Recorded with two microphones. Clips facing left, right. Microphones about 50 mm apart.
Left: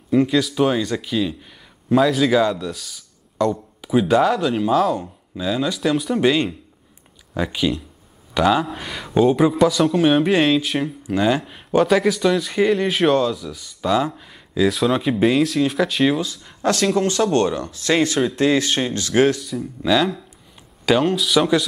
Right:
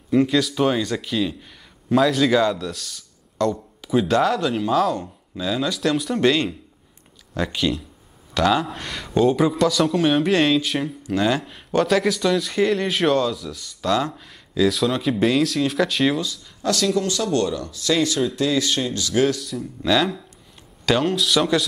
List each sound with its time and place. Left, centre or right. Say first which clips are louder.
0.1 s a man's voice: left 1 dB; centre
16.3 s speech: left 3 dB; left
19.5 s a man's voice: left 2 dB; centre